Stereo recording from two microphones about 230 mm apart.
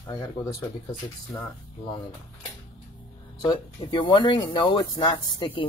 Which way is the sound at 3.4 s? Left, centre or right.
Centre.